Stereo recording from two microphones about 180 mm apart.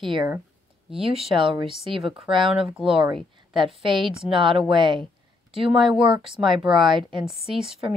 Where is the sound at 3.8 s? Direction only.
25° right (ahead or behind).